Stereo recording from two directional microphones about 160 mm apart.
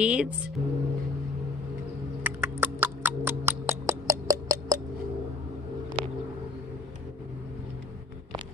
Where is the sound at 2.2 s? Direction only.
15° right (ahead or behind).